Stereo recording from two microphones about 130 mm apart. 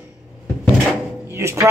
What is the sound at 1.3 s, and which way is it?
Speech, 20° right (ahead or behind).